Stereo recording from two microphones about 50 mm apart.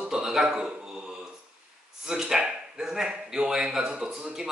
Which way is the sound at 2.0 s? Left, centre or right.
Centre.